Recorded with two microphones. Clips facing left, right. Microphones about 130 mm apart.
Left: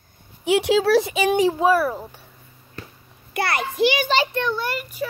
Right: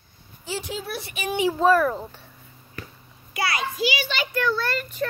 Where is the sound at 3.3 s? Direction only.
55° left (ahead or behind).